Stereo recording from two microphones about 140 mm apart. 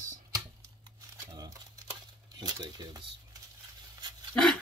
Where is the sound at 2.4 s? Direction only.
30° right (ahead or behind).